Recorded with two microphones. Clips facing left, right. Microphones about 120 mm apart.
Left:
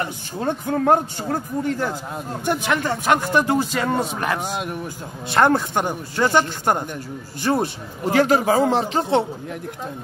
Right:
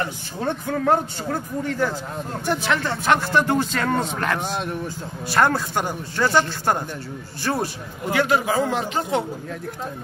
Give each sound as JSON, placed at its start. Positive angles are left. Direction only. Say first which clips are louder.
{"t": 0.7, "sound": "speech", "louder": "left 3 dB", "side_deg": 20}
{"t": 8.0, "sound": "a man's voice", "louder": "left 3 dB", "side_deg": 35}